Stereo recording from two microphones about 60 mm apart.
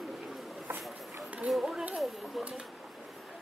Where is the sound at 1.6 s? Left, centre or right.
Centre.